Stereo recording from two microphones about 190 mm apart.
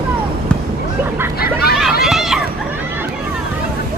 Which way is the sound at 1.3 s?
55° left (ahead or behind).